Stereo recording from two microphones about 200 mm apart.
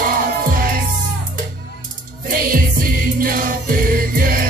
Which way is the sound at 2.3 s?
45° right (ahead or behind).